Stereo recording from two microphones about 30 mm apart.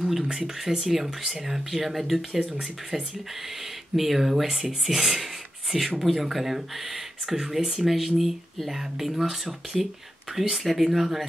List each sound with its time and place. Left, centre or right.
0.0 s speech: centre
3.9 s speech: centre
5.0 s beatboxing: centre
5.9 s speech: centre
10.6 s speech: centre